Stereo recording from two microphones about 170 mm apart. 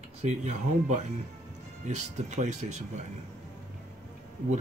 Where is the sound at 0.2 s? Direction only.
45° right (ahead or behind).